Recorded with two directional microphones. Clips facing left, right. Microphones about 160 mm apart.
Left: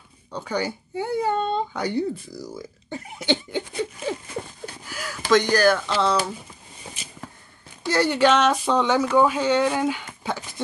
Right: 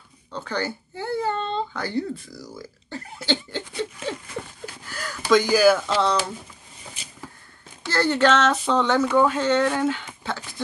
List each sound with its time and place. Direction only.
0.3 s speech: 10° left (ahead or behind)
2.9 s laughter: 15° left (ahead or behind)
4.8 s a sound: 10° left (ahead or behind)
5.4 s speech: 5° right (ahead or behind)
7.8 s speech: 15° left (ahead or behind)
10.2 s a sound: 15° left (ahead or behind)